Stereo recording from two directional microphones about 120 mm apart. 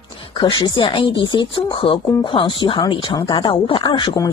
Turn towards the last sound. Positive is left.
turn(degrees=40)  # may be behind; listen again after turning